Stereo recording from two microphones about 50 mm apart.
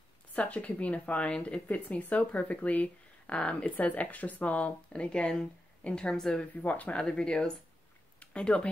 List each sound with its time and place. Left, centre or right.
0.4 s speech: left
6.5 s speech: left
7.0 s speech: centre
8.2 s a sound: left